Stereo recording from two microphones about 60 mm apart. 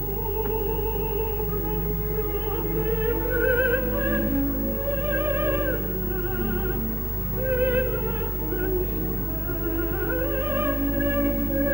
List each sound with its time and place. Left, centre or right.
2.9 s music: right
7.4 s music: right
10.1 s music: right